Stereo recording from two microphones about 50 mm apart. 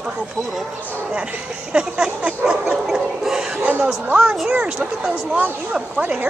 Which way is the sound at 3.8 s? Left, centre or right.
Centre.